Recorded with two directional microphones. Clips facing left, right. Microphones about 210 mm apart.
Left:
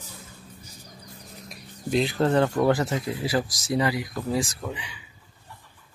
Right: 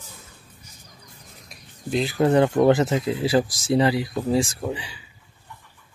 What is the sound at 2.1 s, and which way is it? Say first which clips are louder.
Speech: right 6 dB; 15° right (ahead or behind).